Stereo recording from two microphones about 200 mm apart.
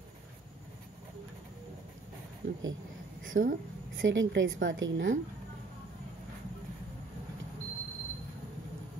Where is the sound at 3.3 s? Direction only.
40° right (ahead or behind).